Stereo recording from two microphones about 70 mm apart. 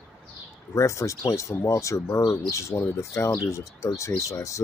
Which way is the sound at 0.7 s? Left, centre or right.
Left.